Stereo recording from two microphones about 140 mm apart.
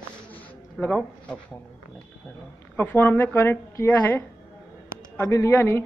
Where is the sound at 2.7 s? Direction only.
15° left (ahead or behind).